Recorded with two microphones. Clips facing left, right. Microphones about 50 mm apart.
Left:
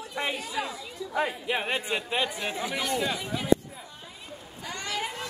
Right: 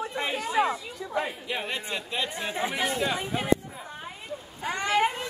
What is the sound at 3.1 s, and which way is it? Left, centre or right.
Speech, right.